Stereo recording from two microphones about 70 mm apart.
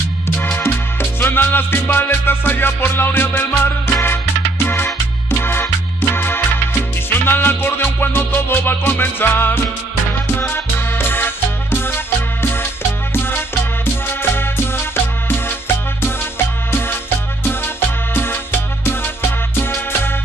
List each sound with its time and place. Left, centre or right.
1.2 s music: left
16.7 s music: left